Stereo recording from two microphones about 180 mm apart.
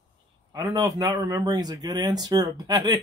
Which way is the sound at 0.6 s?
20° right (ahead or behind).